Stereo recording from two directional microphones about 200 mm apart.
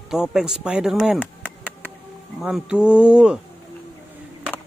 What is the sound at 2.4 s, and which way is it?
Speech, 5° right (ahead or behind).